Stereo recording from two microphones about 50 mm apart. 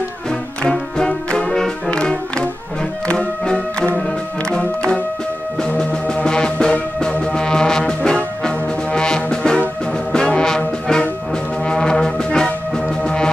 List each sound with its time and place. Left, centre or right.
0.7 s music: centre
5.6 s music: left